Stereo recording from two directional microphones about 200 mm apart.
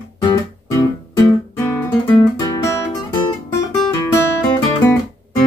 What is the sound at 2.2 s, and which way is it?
Guitar, 20° left (ahead or behind).